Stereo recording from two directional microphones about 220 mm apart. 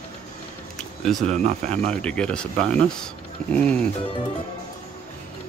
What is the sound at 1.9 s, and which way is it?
Speech, 5° left (ahead or behind).